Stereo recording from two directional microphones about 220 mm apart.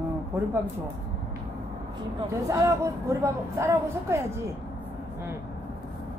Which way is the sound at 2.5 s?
15° right (ahead or behind).